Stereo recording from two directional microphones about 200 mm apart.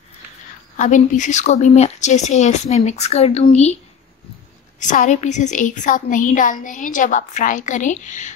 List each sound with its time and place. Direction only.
0.7 s a woman's voice: 40° left (ahead or behind)
4.7 s a woman's voice: 40° left (ahead or behind)